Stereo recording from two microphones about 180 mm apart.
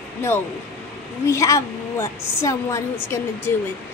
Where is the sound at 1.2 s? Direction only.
15° left (ahead or behind).